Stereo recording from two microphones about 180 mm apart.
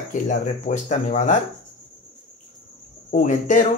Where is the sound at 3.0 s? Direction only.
40° left (ahead or behind).